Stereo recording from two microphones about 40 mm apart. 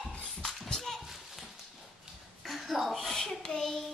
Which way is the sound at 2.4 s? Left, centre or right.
Centre.